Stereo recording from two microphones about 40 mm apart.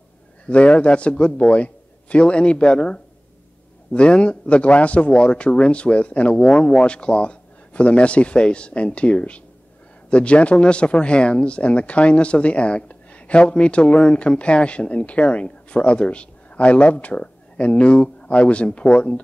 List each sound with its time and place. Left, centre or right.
0.5 s speech: left
6.3 s speech: left